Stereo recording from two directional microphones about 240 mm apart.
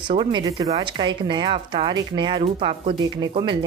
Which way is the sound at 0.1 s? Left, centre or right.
Right.